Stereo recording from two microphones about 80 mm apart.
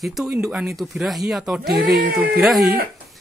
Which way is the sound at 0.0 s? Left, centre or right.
Centre.